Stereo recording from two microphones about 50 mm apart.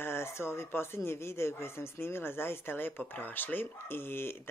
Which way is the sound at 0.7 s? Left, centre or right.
Left.